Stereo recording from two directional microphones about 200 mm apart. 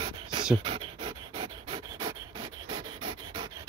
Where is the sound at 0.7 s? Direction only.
25° right (ahead or behind).